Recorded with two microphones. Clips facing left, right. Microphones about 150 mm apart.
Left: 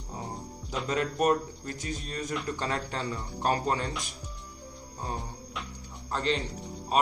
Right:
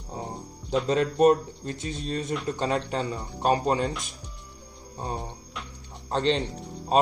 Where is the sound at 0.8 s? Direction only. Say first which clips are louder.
Right 6 dB; 25° right (ahead or behind).